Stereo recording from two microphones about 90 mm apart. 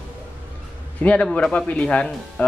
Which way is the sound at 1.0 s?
15° left (ahead or behind).